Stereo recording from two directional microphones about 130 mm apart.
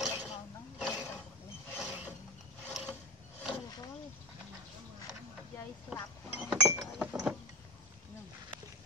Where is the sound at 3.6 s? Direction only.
30° left (ahead or behind).